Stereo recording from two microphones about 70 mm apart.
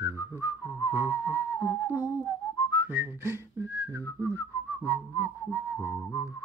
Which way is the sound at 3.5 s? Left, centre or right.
Right.